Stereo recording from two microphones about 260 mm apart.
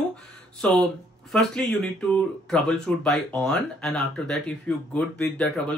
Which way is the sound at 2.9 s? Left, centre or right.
Centre.